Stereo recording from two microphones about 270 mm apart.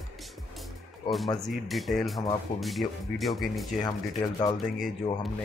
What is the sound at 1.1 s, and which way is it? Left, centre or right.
Speech, centre.